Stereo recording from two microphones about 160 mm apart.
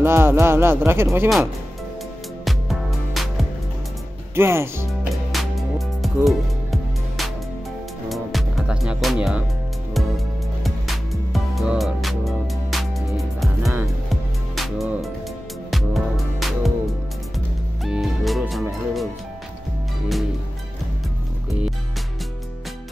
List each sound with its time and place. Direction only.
0.0 s speech: 15° right (ahead or behind)
2.4 s music: centre (ahead or behind)
4.4 s speech: 15° right (ahead or behind)
5.3 s music: centre (ahead or behind)
17.8 s music: centre (ahead or behind)